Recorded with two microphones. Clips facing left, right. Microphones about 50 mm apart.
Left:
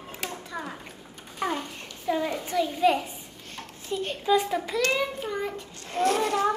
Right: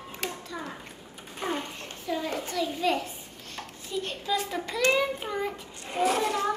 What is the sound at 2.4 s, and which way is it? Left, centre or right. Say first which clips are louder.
Children playing: left 4 dB; centre.